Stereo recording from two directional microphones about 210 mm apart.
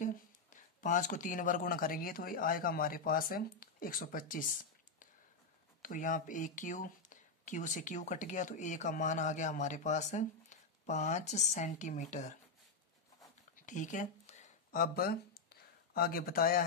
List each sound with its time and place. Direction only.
0.0 s speech: 40° left (ahead or behind)
5.8 s speech: 40° left (ahead or behind)
13.7 s a sound: 35° left (ahead or behind)